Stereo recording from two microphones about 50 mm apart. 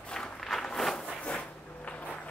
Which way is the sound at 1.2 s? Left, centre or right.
Left.